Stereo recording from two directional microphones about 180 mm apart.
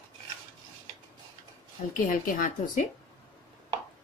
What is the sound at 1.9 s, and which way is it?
Speech, 50° left (ahead or behind).